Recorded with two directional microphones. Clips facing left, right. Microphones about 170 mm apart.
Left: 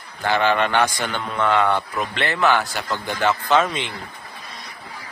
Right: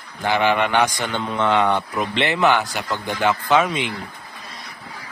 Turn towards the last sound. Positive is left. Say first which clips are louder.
# right 1 dB
turn(degrees=-10)  # may be behind; listen again after turning